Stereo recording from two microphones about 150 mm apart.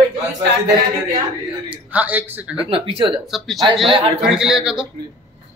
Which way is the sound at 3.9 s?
35° right (ahead or behind).